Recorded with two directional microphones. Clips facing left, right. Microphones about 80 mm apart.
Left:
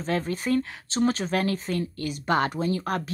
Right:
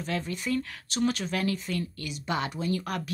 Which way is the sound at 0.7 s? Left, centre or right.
Left.